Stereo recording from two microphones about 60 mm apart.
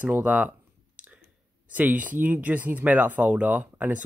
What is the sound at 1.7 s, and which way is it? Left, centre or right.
Speech, right.